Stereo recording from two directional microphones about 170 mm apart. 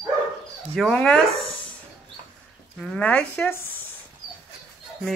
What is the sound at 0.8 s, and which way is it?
Speech, 5° left (ahead or behind).